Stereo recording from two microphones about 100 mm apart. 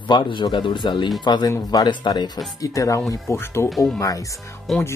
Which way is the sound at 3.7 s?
Centre (ahead or behind).